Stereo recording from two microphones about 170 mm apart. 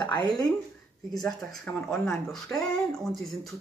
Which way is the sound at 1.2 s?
Centre (ahead or behind).